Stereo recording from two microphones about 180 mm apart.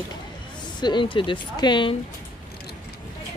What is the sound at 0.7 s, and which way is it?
Speech, 25° left (ahead or behind).